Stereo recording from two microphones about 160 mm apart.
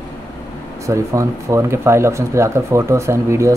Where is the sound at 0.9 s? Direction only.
20° right (ahead or behind).